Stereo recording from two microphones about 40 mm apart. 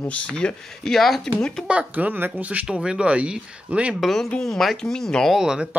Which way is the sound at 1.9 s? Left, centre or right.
Right.